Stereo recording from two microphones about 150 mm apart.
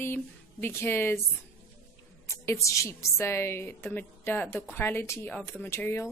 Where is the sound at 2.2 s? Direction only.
20° left (ahead or behind).